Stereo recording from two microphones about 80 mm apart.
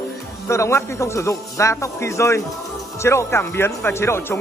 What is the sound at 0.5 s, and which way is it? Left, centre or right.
Speech, left.